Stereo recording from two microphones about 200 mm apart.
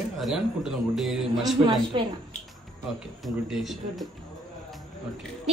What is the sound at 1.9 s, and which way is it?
Speech, 25° right (ahead or behind).